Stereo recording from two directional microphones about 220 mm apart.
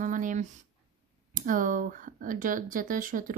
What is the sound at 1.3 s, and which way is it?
Speech, 40° right (ahead or behind).